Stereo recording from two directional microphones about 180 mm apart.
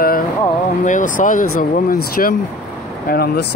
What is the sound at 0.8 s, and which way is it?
Speech, 45° left (ahead or behind).